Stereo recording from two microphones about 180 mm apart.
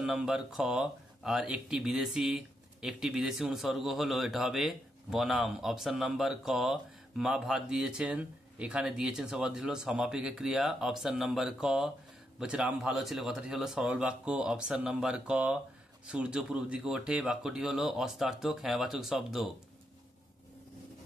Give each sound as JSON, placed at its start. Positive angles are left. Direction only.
{"t": 0.0, "sound": "speech", "side_deg": -5}